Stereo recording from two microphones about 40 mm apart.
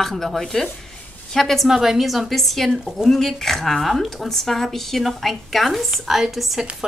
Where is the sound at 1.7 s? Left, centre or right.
Centre.